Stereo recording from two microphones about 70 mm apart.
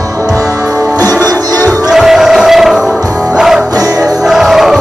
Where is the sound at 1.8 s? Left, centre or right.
Centre.